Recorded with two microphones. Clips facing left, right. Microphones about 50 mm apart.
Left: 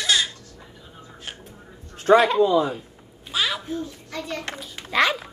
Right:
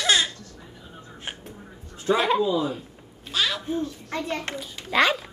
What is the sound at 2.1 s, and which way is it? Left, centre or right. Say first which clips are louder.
Speech: left 7 dB; left.